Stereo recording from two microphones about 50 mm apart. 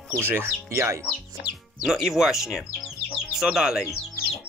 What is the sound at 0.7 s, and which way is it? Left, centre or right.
Speech, right.